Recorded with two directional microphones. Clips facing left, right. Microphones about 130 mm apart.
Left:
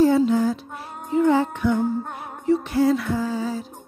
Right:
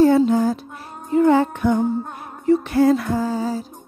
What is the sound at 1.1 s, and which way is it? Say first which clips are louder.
Music: right 3 dB; 60° right (ahead or behind).